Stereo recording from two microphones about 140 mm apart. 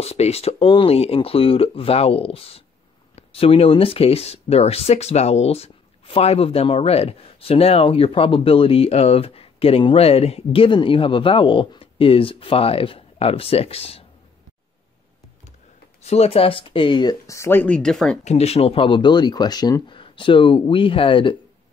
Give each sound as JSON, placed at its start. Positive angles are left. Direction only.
{"t": 0.0, "sound": "speech", "side_deg": 50}
{"t": 16.0, "sound": "speech", "side_deg": 50}
{"t": 18.2, "sound": "speech", "side_deg": 50}